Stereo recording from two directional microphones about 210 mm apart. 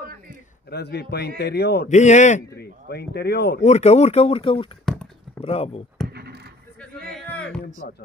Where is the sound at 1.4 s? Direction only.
50° left (ahead or behind).